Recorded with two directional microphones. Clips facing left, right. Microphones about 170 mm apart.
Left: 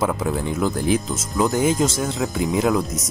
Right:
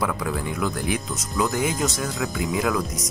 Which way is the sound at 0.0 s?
25° left (ahead or behind).